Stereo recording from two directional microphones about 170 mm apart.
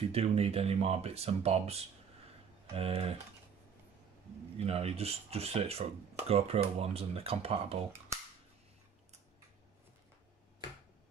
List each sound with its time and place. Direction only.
0.1 s speech: 35° right (ahead or behind)
4.6 s speech: 35° right (ahead or behind)